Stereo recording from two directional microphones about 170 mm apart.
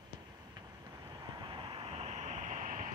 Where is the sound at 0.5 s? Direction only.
25° right (ahead or behind); by 2.9 s 50° right (ahead or behind).